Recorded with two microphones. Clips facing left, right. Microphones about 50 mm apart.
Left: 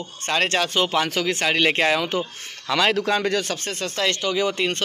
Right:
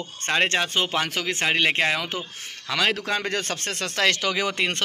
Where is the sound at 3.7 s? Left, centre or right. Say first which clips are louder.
Right 4 dB; right.